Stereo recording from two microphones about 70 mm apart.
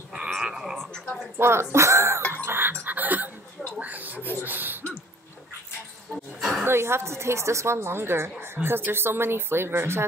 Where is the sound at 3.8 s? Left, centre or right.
Right.